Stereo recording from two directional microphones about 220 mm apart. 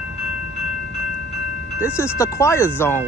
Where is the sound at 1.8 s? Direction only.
10° left (ahead or behind).